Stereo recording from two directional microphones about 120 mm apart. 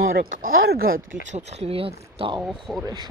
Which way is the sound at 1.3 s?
65° right (ahead or behind).